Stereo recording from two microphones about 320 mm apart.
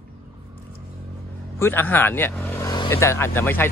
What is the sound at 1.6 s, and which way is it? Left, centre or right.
Speech, centre.